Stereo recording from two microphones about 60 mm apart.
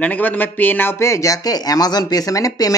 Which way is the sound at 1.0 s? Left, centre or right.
Left.